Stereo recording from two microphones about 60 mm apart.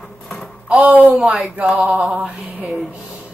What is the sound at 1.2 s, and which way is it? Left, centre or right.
Speech, centre.